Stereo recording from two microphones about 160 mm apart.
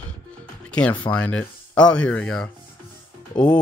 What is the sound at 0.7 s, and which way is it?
Speech, 5° left (ahead or behind).